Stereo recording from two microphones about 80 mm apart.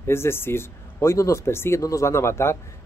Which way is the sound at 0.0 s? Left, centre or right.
Left.